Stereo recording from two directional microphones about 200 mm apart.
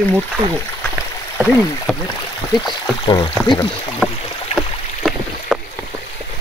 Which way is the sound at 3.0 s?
25° left (ahead or behind).